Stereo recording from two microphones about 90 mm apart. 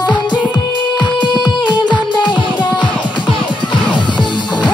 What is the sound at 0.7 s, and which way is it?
Music, 60° left (ahead or behind).